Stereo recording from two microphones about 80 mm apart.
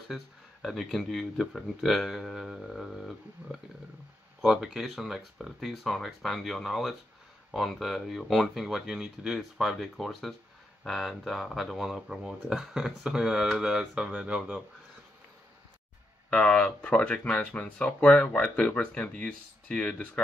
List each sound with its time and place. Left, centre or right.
0.1 s speech: centre
16.3 s speech: centre